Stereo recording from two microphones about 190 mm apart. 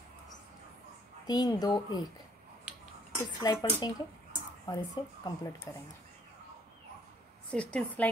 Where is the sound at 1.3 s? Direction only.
20° left (ahead or behind).